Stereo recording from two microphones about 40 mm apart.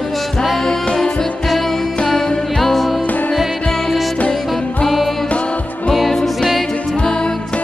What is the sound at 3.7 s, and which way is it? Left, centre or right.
Music, centre.